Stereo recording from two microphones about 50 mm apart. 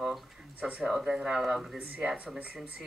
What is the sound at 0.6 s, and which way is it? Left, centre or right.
Speech, right.